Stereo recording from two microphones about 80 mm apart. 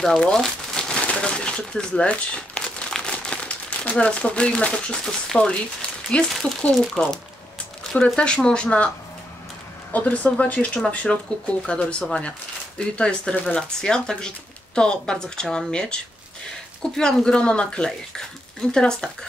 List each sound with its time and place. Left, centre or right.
0.0 s speech: centre
9.9 s speech: centre